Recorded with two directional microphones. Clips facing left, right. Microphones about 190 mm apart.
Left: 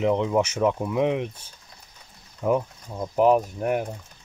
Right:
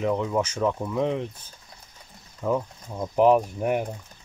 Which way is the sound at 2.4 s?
10° left (ahead or behind).